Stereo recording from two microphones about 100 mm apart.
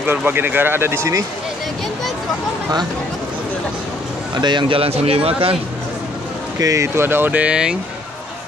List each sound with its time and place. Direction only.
0.0 s speech: 20° right (ahead or behind)
4.4 s speech: 50° right (ahead or behind); by 5.6 s 70° right (ahead or behind)
6.6 s speech: 30° right (ahead or behind); by 7.7 s 10° right (ahead or behind)